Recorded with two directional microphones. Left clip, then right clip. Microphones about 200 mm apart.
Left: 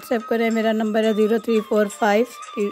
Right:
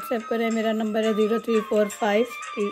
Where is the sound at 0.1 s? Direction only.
20° left (ahead or behind).